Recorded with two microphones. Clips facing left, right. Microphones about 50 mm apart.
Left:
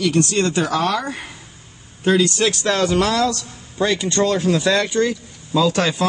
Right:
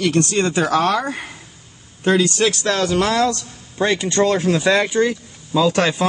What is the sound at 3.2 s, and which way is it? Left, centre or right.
Speech, right.